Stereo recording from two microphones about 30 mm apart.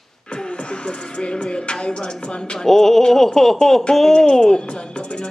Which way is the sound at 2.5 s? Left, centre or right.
Centre.